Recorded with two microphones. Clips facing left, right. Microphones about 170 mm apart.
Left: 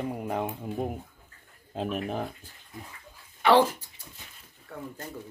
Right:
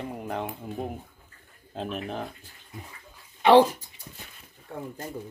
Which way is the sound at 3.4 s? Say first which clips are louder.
Right 4 dB; 15° right (ahead or behind).